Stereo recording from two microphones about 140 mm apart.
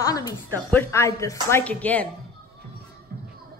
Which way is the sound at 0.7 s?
15° left (ahead or behind).